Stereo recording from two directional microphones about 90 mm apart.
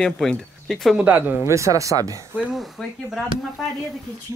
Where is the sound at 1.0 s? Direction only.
15° right (ahead or behind).